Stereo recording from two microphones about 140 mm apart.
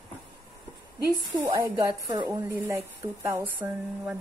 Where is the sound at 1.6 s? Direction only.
15° right (ahead or behind).